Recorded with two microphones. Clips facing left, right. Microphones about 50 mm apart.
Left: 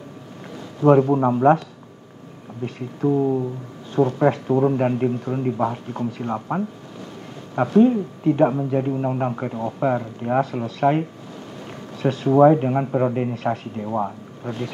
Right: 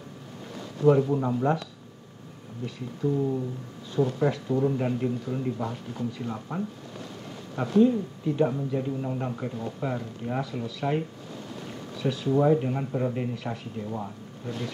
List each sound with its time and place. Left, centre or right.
0.8 s a man's voice: left
2.6 s a man's voice: left
12.0 s a man's voice: left
13.3 s speech: left